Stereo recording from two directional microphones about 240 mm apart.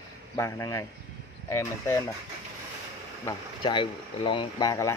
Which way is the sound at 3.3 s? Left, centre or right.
Centre.